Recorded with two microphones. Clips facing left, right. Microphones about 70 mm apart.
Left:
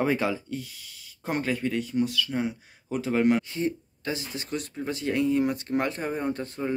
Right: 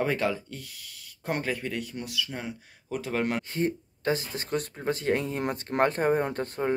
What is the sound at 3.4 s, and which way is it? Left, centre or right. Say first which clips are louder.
Speech: even; right.